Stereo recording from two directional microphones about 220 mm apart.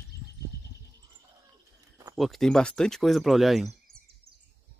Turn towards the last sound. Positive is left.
turn(degrees=0)  # may be behind; listen again after turning